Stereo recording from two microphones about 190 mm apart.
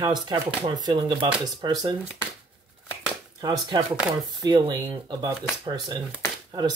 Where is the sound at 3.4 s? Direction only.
20° right (ahead or behind).